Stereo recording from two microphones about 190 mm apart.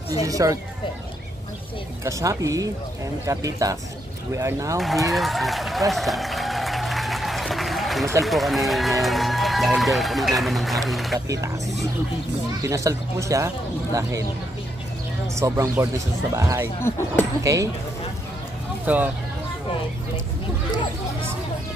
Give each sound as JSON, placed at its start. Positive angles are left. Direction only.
{"t": 0.1, "sound": "speech", "side_deg": -20}
{"t": 2.0, "sound": "speech", "side_deg": -15}
{"t": 4.7, "sound": "speech", "side_deg": 0}
{"t": 5.1, "sound": "applause", "side_deg": 0}
{"t": 8.2, "sound": "speech", "side_deg": 0}
{"t": 12.6, "sound": "speech", "side_deg": -15}
{"t": 15.2, "sound": "speech", "side_deg": -15}
{"t": 16.8, "sound": "speech", "side_deg": 10}
{"t": 17.4, "sound": "speech", "side_deg": -15}
{"t": 18.9, "sound": "speech", "side_deg": -10}